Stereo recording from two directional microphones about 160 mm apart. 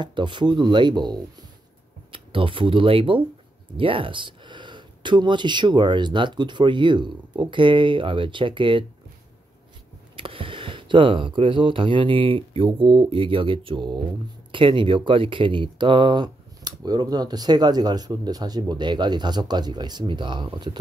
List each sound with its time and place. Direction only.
0.0 s speech: 30° right (ahead or behind)
10.1 s speech: 35° right (ahead or behind)